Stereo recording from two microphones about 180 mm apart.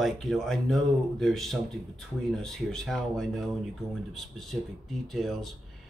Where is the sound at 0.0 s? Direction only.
Centre (ahead or behind).